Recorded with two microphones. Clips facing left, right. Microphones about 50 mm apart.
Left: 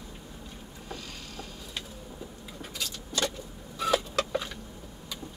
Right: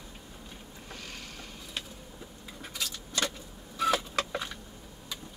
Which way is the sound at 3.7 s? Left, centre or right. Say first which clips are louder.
Left 1 dB; centre.